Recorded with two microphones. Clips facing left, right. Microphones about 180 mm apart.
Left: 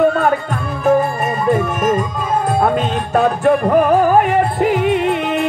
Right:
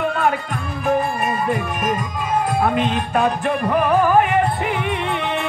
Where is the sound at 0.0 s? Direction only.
40° left (ahead or behind).